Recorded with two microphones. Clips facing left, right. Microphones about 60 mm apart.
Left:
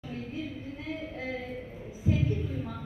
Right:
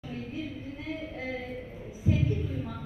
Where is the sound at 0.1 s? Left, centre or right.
Left.